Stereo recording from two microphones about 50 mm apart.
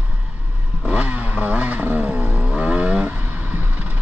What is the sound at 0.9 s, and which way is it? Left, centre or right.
Motorcycle, right.